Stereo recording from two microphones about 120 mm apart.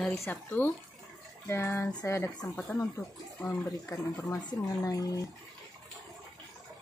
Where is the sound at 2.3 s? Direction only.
5° left (ahead or behind).